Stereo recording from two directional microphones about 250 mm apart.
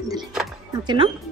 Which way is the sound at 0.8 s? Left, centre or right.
Centre.